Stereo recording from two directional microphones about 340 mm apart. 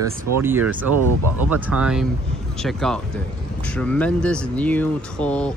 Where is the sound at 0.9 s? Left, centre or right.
Right.